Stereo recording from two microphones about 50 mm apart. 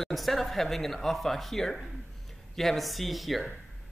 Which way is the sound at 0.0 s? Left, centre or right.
Centre.